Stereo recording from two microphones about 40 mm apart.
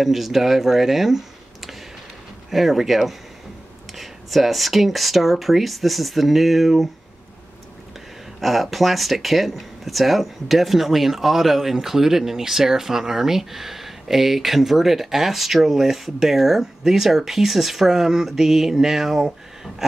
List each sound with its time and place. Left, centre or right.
0.0 s speech: centre
2.5 s speech: centre
8.4 s speech: centre